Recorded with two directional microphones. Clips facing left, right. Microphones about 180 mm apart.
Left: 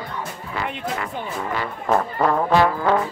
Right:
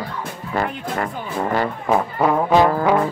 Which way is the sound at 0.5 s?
45° right (ahead or behind).